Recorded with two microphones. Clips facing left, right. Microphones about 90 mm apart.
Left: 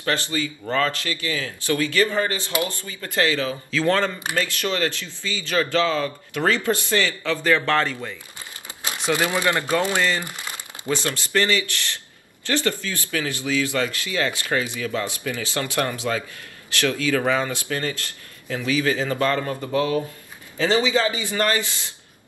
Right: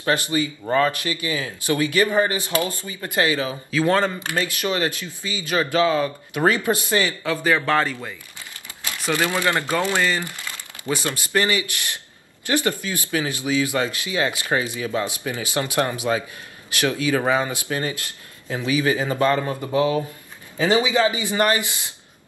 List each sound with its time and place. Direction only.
0.0 s speech: 20° right (ahead or behind)
9.4 s speech: 20° right (ahead or behind)
10.2 s crumpling: 20° left (ahead or behind)
11.1 s speech: 15° right (ahead or behind)